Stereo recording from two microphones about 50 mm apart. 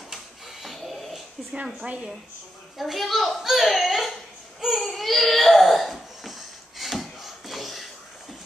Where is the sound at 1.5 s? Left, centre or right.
Centre.